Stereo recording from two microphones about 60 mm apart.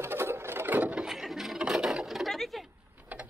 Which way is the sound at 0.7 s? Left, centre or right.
Right.